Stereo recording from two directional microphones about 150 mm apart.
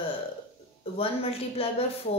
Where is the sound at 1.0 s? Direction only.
40° left (ahead or behind).